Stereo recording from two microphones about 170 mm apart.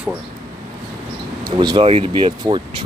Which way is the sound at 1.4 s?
25° right (ahead or behind).